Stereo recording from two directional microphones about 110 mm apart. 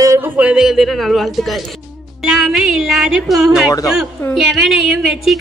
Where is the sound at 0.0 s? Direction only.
30° right (ahead or behind).